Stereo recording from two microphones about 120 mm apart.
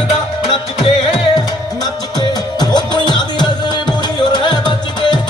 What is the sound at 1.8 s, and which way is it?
Music, 35° left (ahead or behind).